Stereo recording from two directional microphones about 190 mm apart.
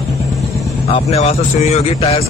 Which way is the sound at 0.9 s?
35° left (ahead or behind).